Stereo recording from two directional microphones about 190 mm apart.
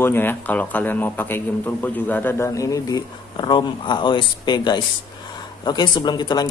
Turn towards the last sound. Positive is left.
turn(degrees=20)  # may be behind; listen again after turning